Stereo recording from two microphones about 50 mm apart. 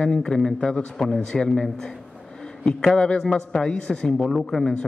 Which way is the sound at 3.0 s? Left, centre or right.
Left.